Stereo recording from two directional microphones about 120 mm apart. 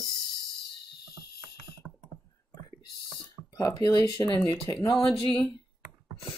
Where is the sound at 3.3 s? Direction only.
30° left (ahead or behind).